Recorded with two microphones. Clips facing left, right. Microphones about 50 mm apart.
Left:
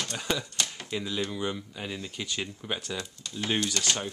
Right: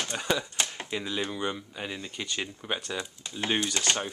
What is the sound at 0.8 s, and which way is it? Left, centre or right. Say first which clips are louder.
Speech: even; centre.